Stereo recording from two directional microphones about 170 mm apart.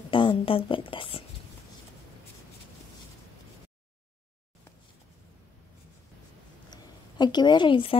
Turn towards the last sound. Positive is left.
turn(degrees=30)  # may be behind; listen again after turning